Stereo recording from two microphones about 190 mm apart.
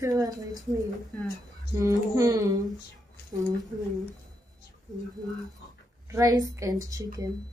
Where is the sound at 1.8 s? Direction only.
15° right (ahead or behind).